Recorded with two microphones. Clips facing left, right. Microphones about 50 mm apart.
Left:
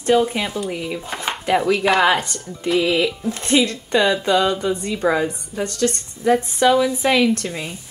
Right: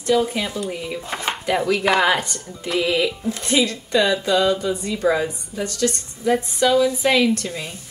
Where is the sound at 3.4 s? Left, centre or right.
Left.